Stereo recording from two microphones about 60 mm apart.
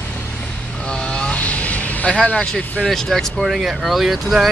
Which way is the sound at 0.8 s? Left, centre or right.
Centre.